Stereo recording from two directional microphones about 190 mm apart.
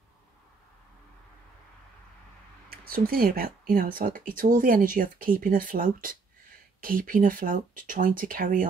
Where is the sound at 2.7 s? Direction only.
50° right (ahead or behind).